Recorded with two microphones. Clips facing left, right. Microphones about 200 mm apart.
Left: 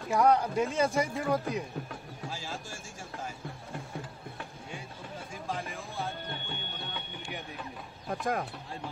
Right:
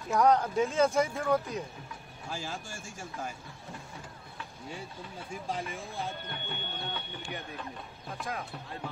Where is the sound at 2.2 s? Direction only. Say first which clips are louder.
Right 2 dB; 50° right (ahead or behind).